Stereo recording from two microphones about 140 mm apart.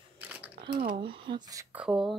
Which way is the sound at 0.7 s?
90° right.